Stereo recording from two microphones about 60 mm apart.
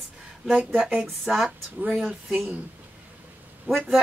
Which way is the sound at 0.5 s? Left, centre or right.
Centre.